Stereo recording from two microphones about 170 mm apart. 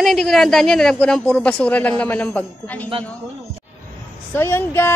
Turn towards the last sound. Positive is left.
turn(degrees=15)  # may be behind; listen again after turning